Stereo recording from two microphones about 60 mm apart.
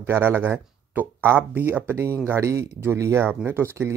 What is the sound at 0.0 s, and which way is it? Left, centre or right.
Speech, right.